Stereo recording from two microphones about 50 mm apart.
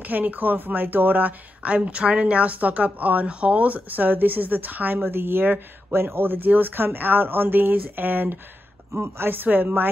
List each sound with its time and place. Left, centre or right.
0.0 s speech: right
5.0 s speech: right
8.9 s speech: right
9.3 s speech: right